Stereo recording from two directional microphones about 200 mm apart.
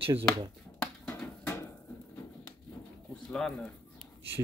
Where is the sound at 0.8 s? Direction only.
5° left (ahead or behind).